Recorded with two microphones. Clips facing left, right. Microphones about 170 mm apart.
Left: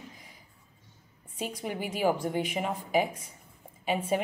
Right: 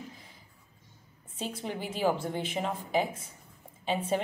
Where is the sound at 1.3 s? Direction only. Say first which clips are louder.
Left 1 dB; 10° left (ahead or behind).